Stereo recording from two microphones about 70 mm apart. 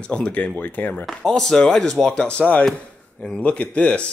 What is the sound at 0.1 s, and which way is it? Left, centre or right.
Speech, centre.